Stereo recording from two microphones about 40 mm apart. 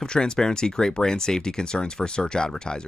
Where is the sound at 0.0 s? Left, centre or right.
Centre.